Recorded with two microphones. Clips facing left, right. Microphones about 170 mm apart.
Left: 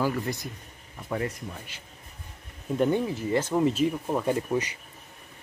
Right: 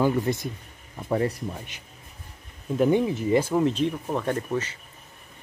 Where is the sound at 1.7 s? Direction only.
15° right (ahead or behind).